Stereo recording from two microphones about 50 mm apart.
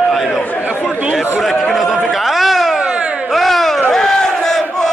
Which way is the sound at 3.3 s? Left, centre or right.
Centre.